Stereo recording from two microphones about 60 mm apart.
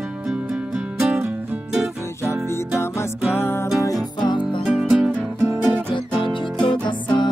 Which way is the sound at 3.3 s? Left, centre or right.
Left.